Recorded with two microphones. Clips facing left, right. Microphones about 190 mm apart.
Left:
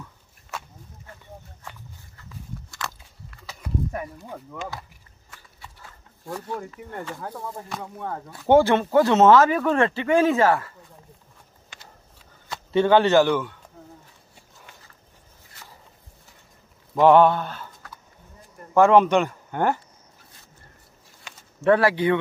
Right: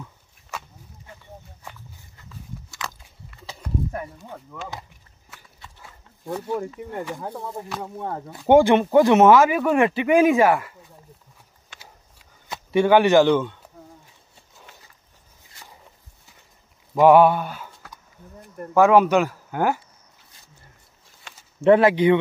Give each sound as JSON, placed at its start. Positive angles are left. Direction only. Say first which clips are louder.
{"t": 5.8, "sound": "speech", "louder": "right 1 dB", "side_deg": -15}
{"t": 12.4, "sound": "speech", "louder": "right 1 dB", "side_deg": -15}
{"t": 16.9, "sound": "speech", "louder": "right 2 dB", "side_deg": -10}
{"t": 21.5, "sound": "speech", "louder": "right 4 dB", "side_deg": -20}